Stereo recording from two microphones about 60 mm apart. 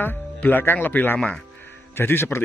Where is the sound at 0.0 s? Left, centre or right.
Left.